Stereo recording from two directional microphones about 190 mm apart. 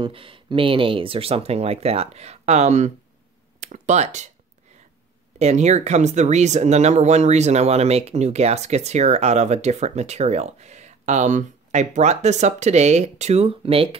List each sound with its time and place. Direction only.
0.0 s speech: 30° right (ahead or behind)
5.4 s speech: 35° right (ahead or behind)